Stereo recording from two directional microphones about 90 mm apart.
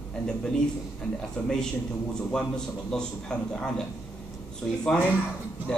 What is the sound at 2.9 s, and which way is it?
Speech, 5° left (ahead or behind).